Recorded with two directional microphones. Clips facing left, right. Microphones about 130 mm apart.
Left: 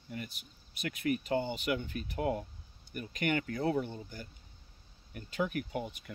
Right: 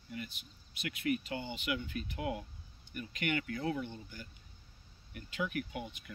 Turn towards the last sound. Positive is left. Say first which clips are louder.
# left 3 dB
turn(degrees=45)  # may be behind; listen again after turning